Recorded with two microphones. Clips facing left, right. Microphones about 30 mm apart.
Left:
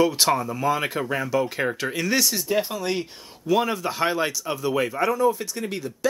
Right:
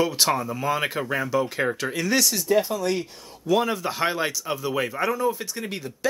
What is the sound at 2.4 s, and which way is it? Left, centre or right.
Speech, centre.